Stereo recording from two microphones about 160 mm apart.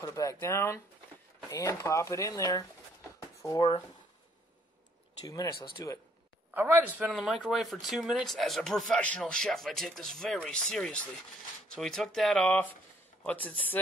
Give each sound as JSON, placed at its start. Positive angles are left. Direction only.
{"t": 0.0, "sound": "speech", "side_deg": 20}
{"t": 3.2, "sound": "a sound", "side_deg": 20}
{"t": 5.2, "sound": "speech", "side_deg": 20}
{"t": 6.5, "sound": "a man's voice", "side_deg": -15}
{"t": 7.0, "sound": "speech", "side_deg": 0}